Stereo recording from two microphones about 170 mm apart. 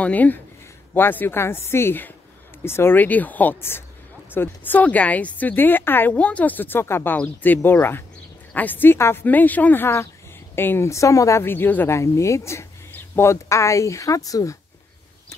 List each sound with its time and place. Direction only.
0.0 s speech: 10° left (ahead or behind)